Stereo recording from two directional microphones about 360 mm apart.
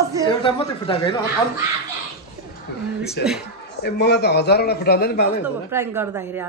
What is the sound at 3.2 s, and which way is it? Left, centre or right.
A man's voice, left.